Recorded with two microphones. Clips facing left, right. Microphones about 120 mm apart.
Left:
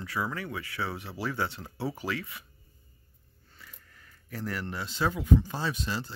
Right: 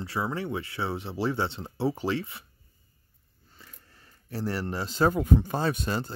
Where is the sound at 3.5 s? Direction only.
30° right (ahead or behind); by 6.1 s 50° right (ahead or behind).